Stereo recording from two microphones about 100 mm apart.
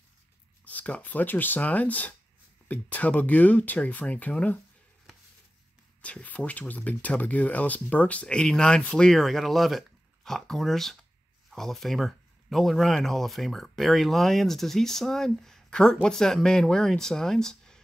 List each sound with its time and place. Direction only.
0.7 s speech: 15° left (ahead or behind)
6.0 s speech: 15° left (ahead or behind)